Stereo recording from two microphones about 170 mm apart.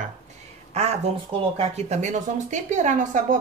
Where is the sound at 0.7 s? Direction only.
40° right (ahead or behind).